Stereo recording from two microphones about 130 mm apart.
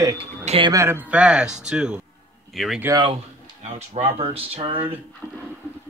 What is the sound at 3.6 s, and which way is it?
Speech, 50° right (ahead or behind).